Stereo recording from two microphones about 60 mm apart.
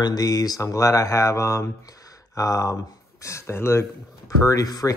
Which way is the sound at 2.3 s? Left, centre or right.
Left.